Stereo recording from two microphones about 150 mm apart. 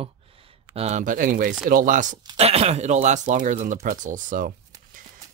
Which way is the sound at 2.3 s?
45° right (ahead or behind).